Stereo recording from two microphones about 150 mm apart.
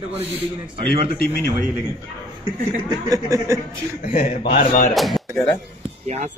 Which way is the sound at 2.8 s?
25° right (ahead or behind).